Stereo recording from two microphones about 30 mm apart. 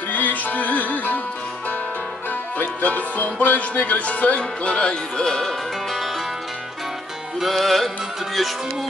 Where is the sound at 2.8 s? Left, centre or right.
Left.